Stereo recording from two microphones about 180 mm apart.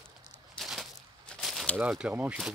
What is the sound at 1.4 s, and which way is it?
Speech, centre (ahead or behind).